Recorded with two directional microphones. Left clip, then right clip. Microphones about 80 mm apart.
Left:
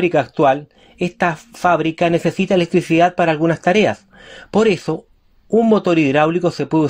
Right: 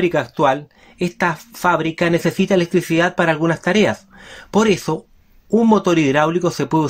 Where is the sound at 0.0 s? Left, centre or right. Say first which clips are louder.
Left 2 dB; left.